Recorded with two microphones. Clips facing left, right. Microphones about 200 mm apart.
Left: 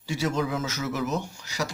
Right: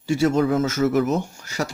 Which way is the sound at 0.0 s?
50° right (ahead or behind).